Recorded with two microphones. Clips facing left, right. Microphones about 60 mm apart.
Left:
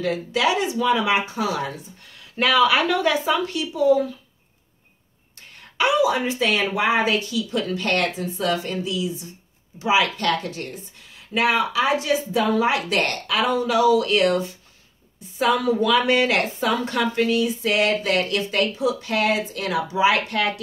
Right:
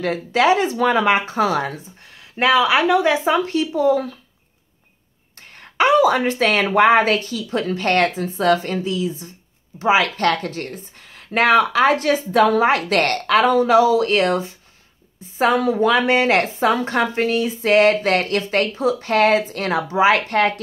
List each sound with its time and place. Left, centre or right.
0.0 s a woman's voice: right
2.3 s speech: right
3.3 s a woman's voice: right
5.6 s a woman's voice: right